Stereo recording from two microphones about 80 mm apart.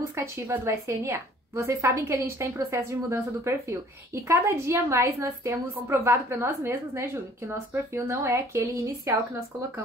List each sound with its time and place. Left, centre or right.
0.7 s a woman's voice: right